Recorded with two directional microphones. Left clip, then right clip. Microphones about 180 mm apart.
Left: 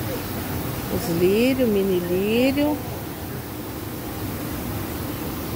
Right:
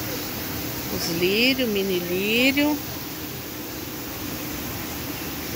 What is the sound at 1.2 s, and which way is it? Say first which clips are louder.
Speech: left 2 dB; 15° left (ahead or behind).